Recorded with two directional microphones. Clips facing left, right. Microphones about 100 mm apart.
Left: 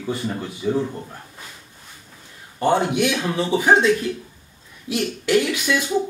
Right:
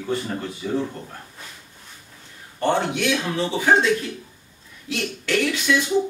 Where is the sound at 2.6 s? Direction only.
10° left (ahead or behind).